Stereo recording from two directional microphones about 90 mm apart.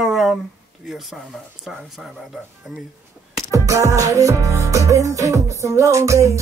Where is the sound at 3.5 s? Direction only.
35° right (ahead or behind).